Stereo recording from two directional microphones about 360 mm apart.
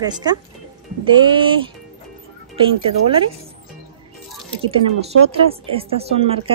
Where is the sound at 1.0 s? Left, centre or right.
Centre.